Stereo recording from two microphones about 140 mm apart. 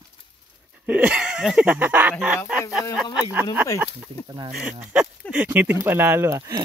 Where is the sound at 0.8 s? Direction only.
10° right (ahead or behind).